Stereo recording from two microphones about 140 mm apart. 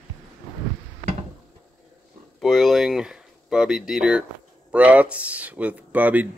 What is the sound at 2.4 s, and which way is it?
Speech, centre (ahead or behind).